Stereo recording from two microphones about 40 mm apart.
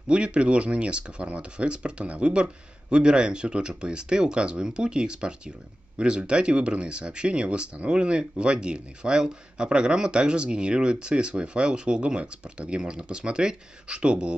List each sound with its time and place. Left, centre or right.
0.1 s speech: right